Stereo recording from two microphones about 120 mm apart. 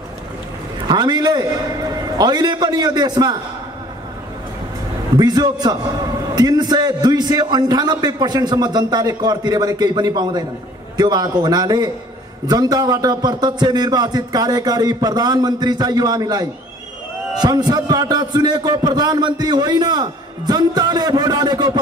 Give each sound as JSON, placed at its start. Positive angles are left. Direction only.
{"t": 0.8, "sound": "a man's voice", "side_deg": -35}
{"t": 5.1, "sound": "a man's voice", "side_deg": -35}